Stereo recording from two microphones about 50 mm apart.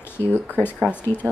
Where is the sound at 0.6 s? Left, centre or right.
Left.